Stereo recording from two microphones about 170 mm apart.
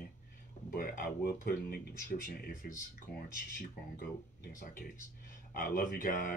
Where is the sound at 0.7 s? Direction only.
60° left (ahead or behind).